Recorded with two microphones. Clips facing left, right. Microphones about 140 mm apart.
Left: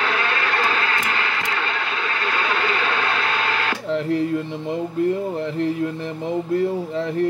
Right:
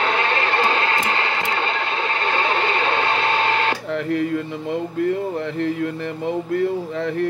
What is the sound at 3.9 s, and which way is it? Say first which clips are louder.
Music: left 5 dB; 60° right (ahead or behind).